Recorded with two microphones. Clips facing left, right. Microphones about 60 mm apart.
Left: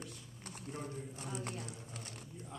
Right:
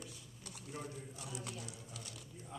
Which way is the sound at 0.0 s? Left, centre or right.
Left.